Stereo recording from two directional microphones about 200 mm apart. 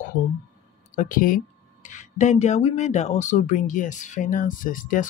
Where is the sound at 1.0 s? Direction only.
45° left (ahead or behind).